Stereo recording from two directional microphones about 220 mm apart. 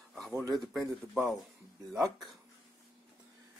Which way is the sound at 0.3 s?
5° right (ahead or behind).